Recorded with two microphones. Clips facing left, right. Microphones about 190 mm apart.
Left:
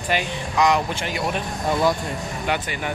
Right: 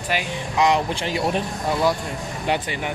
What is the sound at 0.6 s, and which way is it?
Speech, 30° right (ahead or behind).